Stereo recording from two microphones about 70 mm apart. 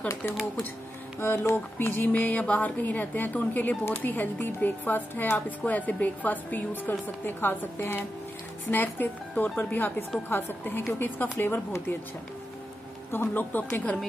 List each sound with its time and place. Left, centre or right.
1.2 s speech: left
13.1 s speech: left